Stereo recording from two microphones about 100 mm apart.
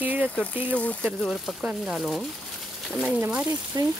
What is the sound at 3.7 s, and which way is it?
Speech, 40° right (ahead or behind).